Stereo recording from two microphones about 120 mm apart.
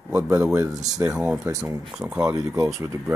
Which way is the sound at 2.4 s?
25° right (ahead or behind).